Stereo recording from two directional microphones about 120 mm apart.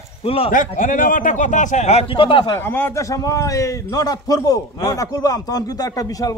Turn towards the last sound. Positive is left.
turn(degrees=30)  # may be behind; listen again after turning